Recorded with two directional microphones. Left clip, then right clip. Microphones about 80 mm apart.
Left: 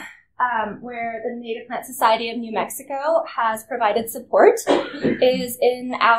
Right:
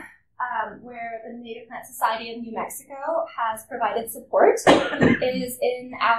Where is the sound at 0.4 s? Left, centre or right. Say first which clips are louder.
Left 6 dB; left.